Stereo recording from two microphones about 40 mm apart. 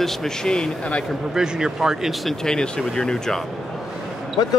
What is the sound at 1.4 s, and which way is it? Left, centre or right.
Speech, centre.